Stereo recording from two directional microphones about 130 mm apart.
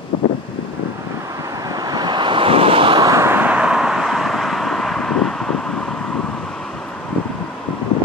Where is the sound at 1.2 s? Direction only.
25° right (ahead or behind); by 3.0 s 45° right (ahead or behind).